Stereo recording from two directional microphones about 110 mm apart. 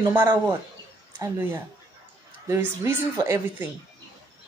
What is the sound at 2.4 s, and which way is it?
Speech, 25° right (ahead or behind).